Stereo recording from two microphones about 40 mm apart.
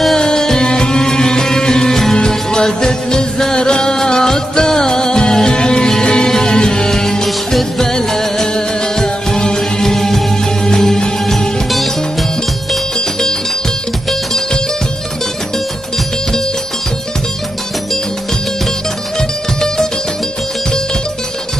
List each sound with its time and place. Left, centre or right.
0.2 s music: centre
11.7 s music: centre
19.1 s music: centre